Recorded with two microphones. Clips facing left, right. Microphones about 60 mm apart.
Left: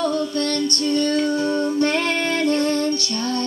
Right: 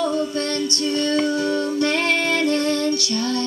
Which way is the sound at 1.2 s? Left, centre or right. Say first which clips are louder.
Even; left.